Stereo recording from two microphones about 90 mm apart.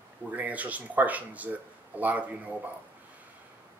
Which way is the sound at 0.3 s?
15° right (ahead or behind).